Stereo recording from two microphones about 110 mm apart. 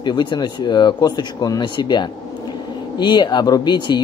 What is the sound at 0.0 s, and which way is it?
Speech, 45° left (ahead or behind).